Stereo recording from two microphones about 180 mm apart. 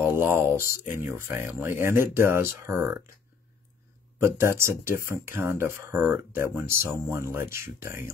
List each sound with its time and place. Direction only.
0.0 s speech: 15° right (ahead or behind)
4.2 s speech: 15° right (ahead or behind)